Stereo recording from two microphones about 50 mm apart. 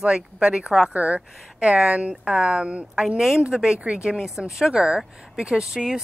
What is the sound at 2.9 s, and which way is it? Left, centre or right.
Speech, centre.